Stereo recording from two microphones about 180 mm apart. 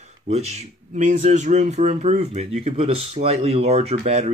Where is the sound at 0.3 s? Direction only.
35° right (ahead or behind).